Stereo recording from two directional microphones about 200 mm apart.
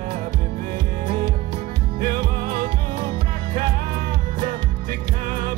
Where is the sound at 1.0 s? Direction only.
50° right (ahead or behind).